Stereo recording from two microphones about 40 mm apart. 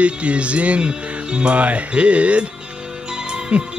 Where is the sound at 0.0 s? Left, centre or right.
Right.